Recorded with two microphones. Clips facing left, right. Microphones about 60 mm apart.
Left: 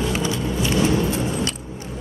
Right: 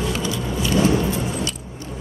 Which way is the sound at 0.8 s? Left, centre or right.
Right.